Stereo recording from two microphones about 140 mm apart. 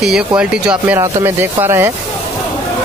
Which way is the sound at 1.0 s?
20° right (ahead or behind).